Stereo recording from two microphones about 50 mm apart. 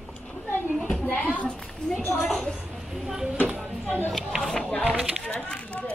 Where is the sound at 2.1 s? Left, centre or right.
Centre.